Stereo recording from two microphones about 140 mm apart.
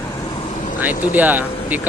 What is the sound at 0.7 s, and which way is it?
Speech, 10° right (ahead or behind).